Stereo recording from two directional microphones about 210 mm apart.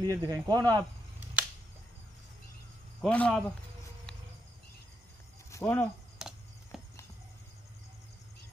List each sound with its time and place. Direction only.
0.0 s speech: 15° right (ahead or behind)
3.0 s speech: 5° left (ahead or behind)
5.5 s speech: 10° left (ahead or behind)
6.1 s a sound: centre (ahead or behind)